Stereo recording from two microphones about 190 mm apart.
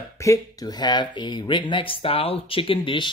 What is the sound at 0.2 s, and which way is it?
Speech, 20° left (ahead or behind).